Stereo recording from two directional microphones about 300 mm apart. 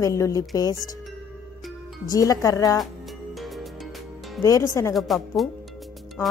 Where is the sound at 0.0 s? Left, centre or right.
Centre.